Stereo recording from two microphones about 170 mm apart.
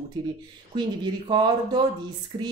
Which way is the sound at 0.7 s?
25° right (ahead or behind).